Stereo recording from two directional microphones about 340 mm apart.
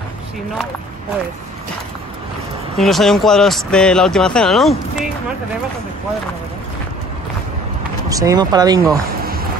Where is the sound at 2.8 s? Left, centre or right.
Centre.